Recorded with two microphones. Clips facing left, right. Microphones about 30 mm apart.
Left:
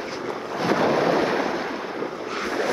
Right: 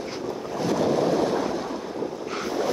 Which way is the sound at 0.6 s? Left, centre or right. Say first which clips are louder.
Left 2 dB; left.